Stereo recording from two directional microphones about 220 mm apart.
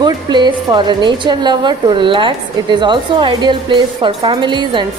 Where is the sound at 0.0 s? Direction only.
20° right (ahead or behind).